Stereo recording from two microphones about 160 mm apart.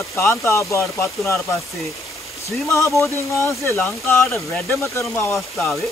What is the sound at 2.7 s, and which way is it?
Speech, 15° left (ahead or behind).